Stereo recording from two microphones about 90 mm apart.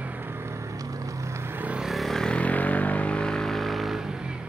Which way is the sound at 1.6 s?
15° right (ahead or behind).